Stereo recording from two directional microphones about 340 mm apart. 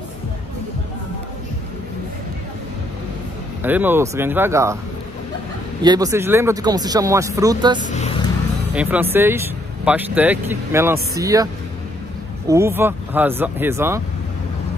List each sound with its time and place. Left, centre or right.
3.6 s speech: centre
5.8 s speech: centre
7.9 s vehicle: centre
9.1 s speech: centre
12.4 s speech: centre